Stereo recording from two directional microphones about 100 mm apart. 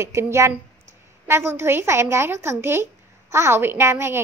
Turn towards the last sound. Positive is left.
turn(degrees=-25)  # may be behind; listen again after turning